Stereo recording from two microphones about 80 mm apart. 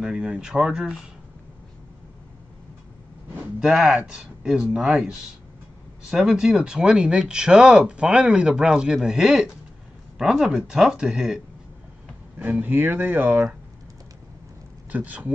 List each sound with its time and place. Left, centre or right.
0.0 s speech: centre
3.5 s speech: centre
12.4 s speech: right
14.9 s speech: centre